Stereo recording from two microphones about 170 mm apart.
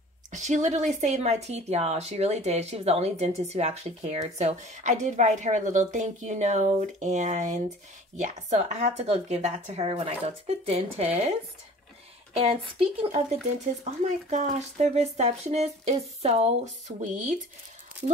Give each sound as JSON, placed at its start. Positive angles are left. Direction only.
{"t": 0.3, "sound": "speech", "side_deg": -45}
{"t": 12.4, "sound": "speech", "side_deg": -35}